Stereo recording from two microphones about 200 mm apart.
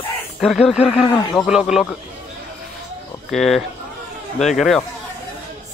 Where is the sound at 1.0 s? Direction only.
20° left (ahead or behind).